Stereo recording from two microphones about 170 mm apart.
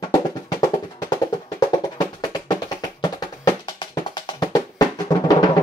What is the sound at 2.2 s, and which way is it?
Music, 25° left (ahead or behind).